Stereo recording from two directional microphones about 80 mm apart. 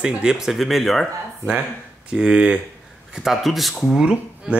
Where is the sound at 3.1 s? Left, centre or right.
Centre.